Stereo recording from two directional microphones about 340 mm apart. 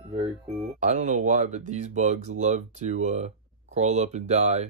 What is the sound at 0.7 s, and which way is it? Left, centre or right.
Speech, right.